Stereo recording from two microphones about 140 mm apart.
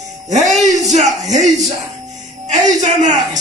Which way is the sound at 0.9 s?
55° right (ahead or behind).